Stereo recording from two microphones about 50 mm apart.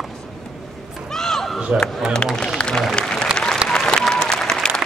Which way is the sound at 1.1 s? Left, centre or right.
Centre.